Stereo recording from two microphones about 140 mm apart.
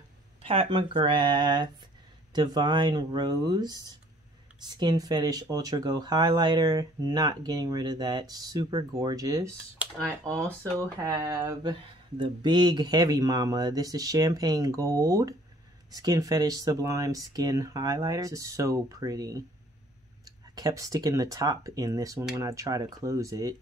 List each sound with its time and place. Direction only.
0.4 s speech: 45° right (ahead or behind); by 3.7 s 30° right (ahead or behind)
4.7 s speech: 30° right (ahead or behind)
10.8 s speech: 25° right (ahead or behind)